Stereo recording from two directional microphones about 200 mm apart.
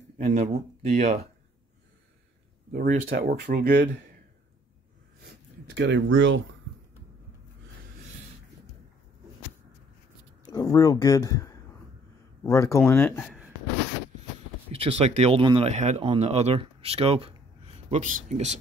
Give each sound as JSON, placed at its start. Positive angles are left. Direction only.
{"t": 0.2, "sound": "speech", "side_deg": -40}
{"t": 2.7, "sound": "speech", "side_deg": -45}
{"t": 5.2, "sound": "a sound", "side_deg": -60}
{"t": 10.4, "sound": "speech", "side_deg": 20}
{"t": 14.7, "sound": "speech", "side_deg": -30}